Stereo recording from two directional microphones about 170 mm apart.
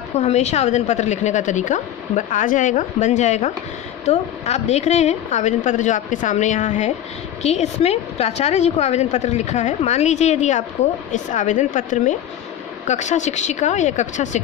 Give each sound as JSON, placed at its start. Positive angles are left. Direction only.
{"t": 0.2, "sound": "a woman's voice", "side_deg": 40}